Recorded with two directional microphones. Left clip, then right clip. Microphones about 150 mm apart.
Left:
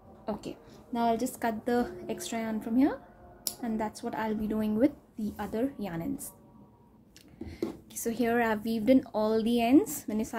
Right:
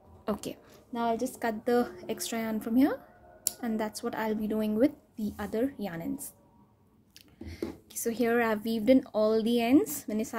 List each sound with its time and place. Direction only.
0.2 s a woman's voice: 55° right (ahead or behind)
0.9 s a woman's voice: 15° right (ahead or behind)
1.5 s a woman's voice: 30° right (ahead or behind)
7.4 s speech: 30° right (ahead or behind)